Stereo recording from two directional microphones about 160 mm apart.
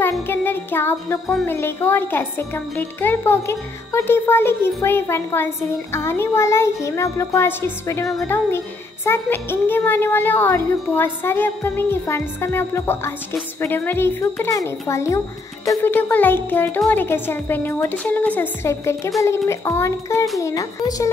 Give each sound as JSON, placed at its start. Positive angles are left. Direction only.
{"t": 0.3, "sound": "music", "side_deg": 15}
{"t": 1.4, "sound": "a woman's voice", "side_deg": 15}